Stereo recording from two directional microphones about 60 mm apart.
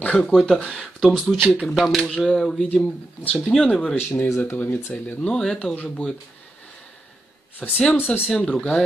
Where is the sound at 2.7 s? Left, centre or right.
Left.